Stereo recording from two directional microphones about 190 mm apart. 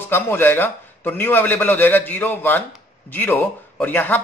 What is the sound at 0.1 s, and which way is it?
A man's voice, 10° left (ahead or behind).